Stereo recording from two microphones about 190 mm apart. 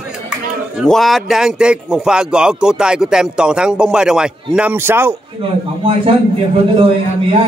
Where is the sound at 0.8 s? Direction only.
Centre (ahead or behind).